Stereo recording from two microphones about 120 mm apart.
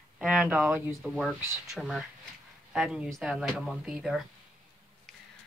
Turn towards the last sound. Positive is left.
turn(degrees=0)  # may be behind; listen again after turning